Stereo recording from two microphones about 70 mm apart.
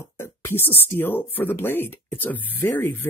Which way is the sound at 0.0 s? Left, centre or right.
Left.